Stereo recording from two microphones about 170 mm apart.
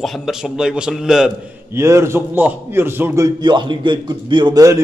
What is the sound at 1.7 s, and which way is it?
A man's voice, 15° right (ahead or behind).